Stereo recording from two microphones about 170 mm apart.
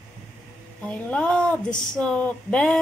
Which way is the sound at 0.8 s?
5° left (ahead or behind).